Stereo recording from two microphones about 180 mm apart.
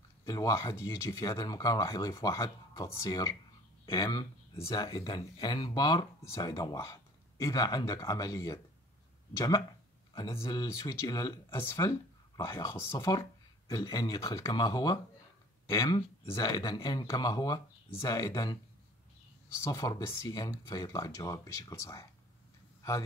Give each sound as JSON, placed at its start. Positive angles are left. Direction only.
{"t": 0.2, "sound": "speech", "side_deg": 20}
{"t": 10.1, "sound": "speech", "side_deg": 20}
{"t": 19.6, "sound": "speech", "side_deg": 20}